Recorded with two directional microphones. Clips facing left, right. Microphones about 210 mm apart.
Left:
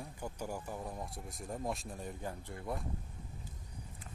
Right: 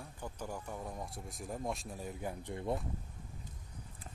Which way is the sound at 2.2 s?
15° right (ahead or behind).